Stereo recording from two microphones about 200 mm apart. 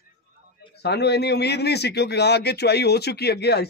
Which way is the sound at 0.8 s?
55° left (ahead or behind).